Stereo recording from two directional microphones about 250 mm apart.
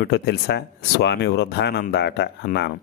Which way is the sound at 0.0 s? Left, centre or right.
Left.